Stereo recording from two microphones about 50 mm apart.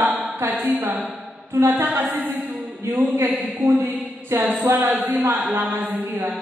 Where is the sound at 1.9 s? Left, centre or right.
Right.